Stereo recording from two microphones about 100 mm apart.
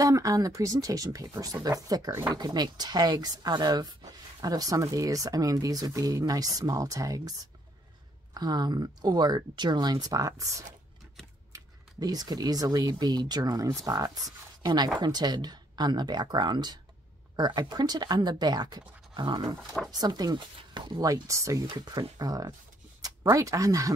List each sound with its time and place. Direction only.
0.0 s speech: 35° right (ahead or behind)
8.4 s speech: 45° right (ahead or behind)
11.5 s speech: 40° right (ahead or behind)
19.2 s dog: 55° right (ahead or behind)
19.9 s speech: 40° right (ahead or behind)
21.0 s speech: 35° right (ahead or behind)
21.6 s speech: 45° right (ahead or behind)